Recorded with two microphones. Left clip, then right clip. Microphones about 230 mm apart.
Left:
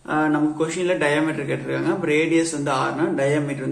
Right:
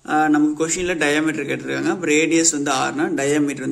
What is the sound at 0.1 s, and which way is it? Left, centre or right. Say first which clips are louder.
A man's voice: right 4 dB; right.